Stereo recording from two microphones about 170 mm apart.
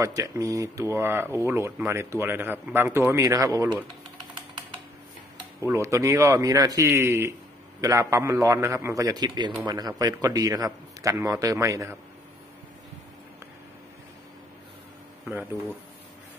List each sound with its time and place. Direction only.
0.0 s speech: 20° right (ahead or behind)
5.7 s a man's voice: 15° right (ahead or behind)